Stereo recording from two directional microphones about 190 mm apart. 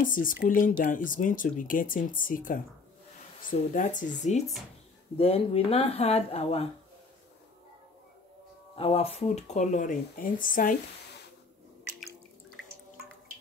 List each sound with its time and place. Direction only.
0.0 s speech: 45° left (ahead or behind)
5.1 s speech: 30° left (ahead or behind)
8.7 s speech: 30° left (ahead or behind); by 10.8 s 45° left (ahead or behind)